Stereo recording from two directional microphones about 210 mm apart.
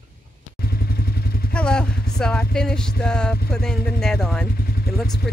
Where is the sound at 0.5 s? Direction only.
50° left (ahead or behind).